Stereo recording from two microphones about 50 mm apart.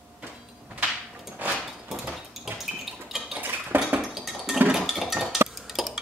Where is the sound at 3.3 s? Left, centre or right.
Right.